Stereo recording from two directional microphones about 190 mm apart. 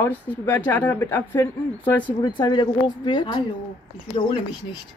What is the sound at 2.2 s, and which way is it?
A woman's voice, 25° left (ahead or behind).